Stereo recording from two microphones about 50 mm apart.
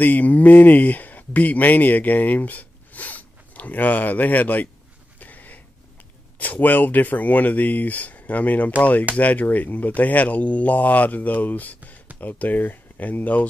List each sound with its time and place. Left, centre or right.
0.0 s speech: left
5.2 s a sound: left
6.3 s speech: left